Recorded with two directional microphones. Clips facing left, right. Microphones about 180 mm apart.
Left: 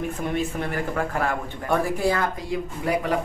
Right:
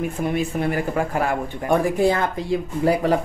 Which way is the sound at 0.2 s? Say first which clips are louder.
Right 5 dB; 10° right (ahead or behind).